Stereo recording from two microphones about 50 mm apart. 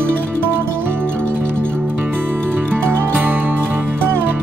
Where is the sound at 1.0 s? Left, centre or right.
Left.